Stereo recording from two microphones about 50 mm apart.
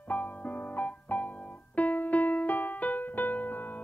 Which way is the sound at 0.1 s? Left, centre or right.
Left.